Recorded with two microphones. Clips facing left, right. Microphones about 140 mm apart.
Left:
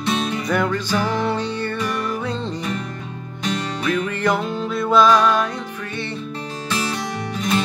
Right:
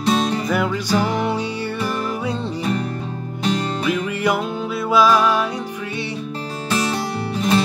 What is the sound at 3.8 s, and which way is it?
Music, 5° right (ahead or behind).